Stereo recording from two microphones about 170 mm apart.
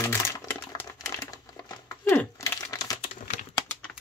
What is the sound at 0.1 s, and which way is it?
Crumpling, 15° left (ahead or behind).